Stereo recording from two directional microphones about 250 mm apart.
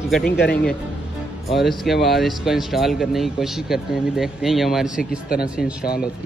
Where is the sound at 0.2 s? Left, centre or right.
Left.